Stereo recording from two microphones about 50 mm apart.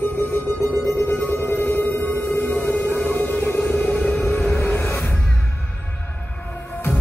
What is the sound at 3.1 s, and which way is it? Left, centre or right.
Music, left.